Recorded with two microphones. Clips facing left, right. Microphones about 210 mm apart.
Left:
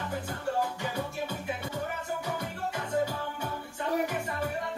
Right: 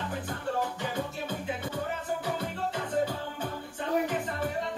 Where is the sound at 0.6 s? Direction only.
10° left (ahead or behind).